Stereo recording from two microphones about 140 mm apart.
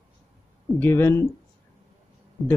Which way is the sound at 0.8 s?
15° left (ahead or behind).